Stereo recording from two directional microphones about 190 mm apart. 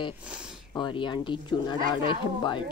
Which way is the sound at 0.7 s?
25° left (ahead or behind).